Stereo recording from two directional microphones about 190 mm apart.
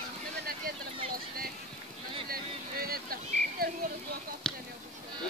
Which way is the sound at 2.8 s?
50° right (ahead or behind).